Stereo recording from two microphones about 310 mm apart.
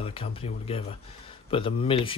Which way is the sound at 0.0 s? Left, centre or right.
Centre.